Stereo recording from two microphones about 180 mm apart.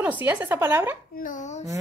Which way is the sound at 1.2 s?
45° left (ahead or behind).